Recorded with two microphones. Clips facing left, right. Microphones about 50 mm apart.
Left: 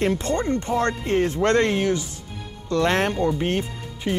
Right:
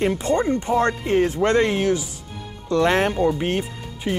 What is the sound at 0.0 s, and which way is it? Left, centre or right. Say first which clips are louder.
Speech: right 2 dB; centre.